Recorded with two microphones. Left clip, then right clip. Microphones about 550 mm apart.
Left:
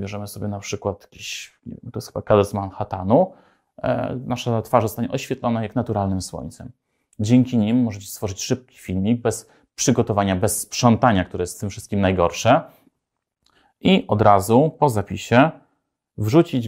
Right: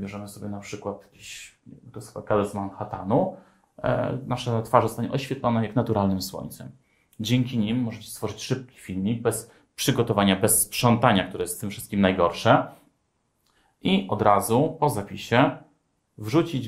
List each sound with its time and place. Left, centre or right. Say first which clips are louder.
0.0 s speech: left 6 dB; left
1.9 s speech: left 7 dB; left
3.8 s speech: left 2 dB; left
7.2 s speech: left 7 dB; left
13.7 s speech: left 6 dB; left